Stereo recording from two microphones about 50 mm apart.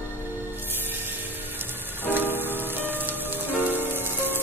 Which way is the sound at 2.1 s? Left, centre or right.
Right.